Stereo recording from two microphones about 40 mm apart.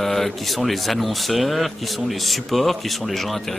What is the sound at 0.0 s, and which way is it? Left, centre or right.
Speech, centre.